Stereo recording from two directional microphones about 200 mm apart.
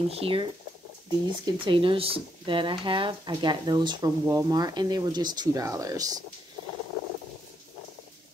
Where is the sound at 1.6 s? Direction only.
25° right (ahead or behind).